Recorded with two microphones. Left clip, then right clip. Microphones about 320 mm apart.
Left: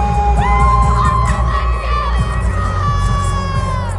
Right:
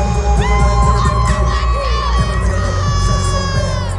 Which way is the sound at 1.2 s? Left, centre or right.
Centre.